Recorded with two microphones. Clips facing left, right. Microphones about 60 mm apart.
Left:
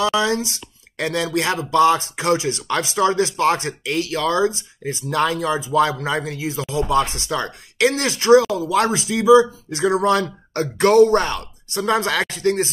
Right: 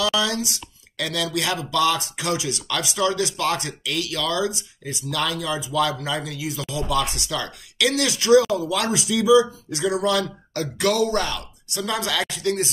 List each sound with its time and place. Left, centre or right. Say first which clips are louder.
0.0 s speech: left 4 dB; left